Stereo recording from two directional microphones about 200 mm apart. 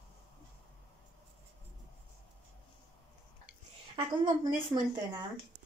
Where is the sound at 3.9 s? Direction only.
25° right (ahead or behind).